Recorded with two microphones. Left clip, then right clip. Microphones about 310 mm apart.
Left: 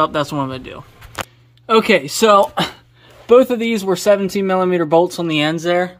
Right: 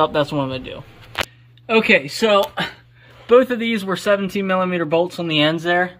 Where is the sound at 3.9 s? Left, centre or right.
Centre.